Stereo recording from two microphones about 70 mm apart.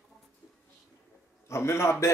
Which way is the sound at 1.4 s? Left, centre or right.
Left.